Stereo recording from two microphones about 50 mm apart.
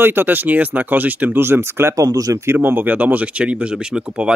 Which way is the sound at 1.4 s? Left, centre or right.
Right.